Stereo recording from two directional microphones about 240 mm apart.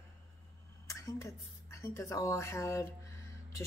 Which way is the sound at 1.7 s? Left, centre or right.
Centre.